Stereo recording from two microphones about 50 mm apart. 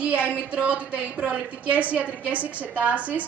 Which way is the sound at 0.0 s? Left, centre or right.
Right.